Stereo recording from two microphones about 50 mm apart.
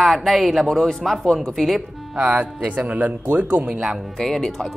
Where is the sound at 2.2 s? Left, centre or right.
Right.